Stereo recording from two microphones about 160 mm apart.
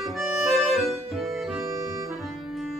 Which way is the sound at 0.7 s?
Centre (ahead or behind).